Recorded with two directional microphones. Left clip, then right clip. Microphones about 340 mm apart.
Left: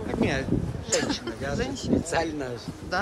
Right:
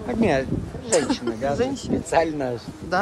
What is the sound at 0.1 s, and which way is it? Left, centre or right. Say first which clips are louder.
Speech: right 6 dB; centre.